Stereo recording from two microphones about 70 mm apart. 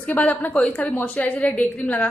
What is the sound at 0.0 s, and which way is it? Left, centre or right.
Speech, left.